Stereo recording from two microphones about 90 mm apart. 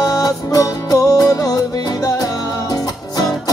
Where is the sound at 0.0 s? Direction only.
40° left (ahead or behind).